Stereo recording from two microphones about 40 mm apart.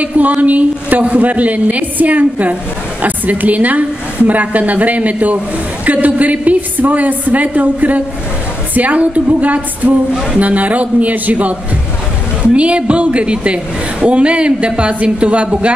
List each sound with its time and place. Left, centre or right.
0.4 s a woman's voice: right
12.5 s a woman's voice: right